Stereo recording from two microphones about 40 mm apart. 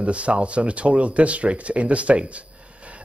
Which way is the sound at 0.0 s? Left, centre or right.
Right.